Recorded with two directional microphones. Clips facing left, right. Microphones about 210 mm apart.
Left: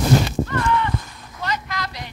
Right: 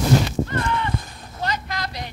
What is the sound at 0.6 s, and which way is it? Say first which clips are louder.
Clip-clop: left 4 dB; 25° right (ahead or behind).